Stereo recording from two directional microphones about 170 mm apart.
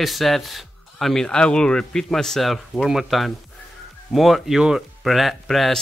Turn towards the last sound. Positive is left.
turn(degrees=0)  # may be behind; listen again after turning